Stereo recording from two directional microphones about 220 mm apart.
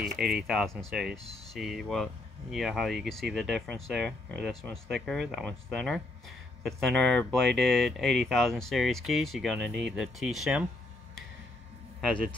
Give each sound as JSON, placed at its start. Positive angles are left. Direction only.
{"t": 0.0, "sound": "speech", "side_deg": 0}
{"t": 12.0, "sound": "speech", "side_deg": 0}